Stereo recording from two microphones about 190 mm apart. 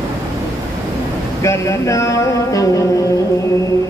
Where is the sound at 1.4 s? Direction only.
15° left (ahead or behind).